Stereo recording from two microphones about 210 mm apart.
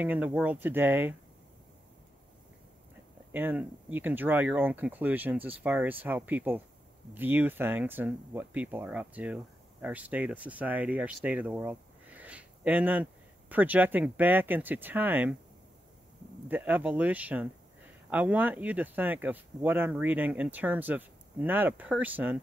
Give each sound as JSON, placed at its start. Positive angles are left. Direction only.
{"t": 0.0, "sound": "speech", "side_deg": -5}
{"t": 3.3, "sound": "speech", "side_deg": -10}
{"t": 16.4, "sound": "speech", "side_deg": -10}